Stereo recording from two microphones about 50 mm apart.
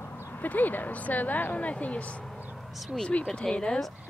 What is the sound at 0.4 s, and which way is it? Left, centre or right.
A woman's voice, left.